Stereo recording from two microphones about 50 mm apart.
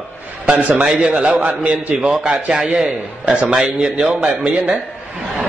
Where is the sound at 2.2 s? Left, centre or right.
Right.